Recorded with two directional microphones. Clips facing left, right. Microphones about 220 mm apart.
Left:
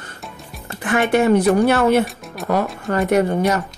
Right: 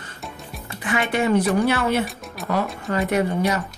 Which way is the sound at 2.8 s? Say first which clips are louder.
Left 5 dB; 45° left (ahead or behind).